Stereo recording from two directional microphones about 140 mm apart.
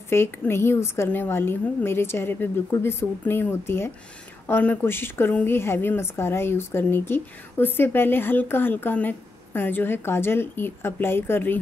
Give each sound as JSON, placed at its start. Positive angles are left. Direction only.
{"t": 0.1, "sound": "a woman's voice", "side_deg": 15}